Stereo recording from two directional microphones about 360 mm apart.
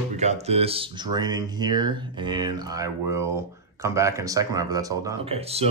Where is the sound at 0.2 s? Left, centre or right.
Centre.